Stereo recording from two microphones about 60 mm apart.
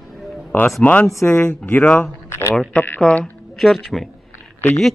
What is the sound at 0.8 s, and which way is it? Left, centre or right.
Speech, left.